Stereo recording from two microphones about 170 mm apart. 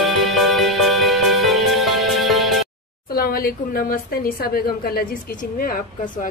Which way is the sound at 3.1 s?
60° left (ahead or behind).